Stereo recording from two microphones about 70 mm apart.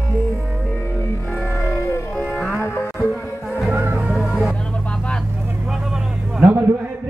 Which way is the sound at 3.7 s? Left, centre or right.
Right.